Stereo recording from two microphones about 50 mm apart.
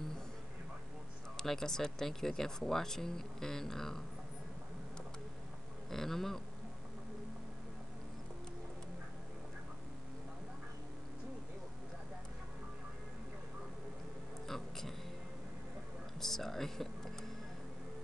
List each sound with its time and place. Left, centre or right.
1.3 s speech: centre
5.9 s speech: centre
14.5 s a sound: centre
16.2 s music: centre